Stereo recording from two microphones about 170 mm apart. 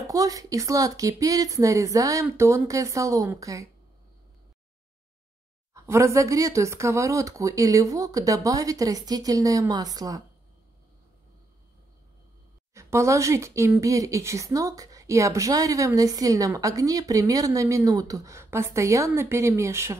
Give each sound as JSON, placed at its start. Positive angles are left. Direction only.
{"t": 0.0, "sound": "speech", "side_deg": -20}
{"t": 5.9, "sound": "speech", "side_deg": -15}
{"t": 12.7, "sound": "speech", "side_deg": -15}